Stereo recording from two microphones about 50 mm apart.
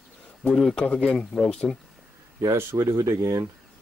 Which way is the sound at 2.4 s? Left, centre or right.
Right.